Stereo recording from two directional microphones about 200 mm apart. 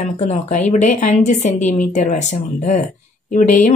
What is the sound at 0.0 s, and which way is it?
A woman's voice, 35° left (ahead or behind).